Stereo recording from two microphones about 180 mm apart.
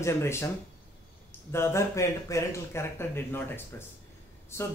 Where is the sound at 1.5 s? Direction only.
15° left (ahead or behind).